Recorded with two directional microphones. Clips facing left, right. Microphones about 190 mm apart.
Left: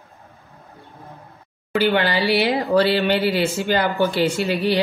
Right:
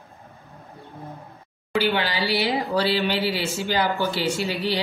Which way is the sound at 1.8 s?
55° left (ahead or behind).